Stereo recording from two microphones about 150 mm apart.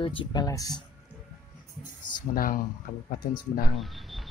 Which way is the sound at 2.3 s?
70° left (ahead or behind).